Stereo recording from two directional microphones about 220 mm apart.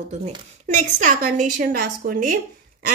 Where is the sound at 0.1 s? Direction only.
30° right (ahead or behind).